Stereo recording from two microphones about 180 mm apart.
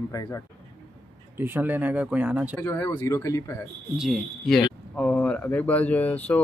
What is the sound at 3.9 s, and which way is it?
Speech, centre (ahead or behind).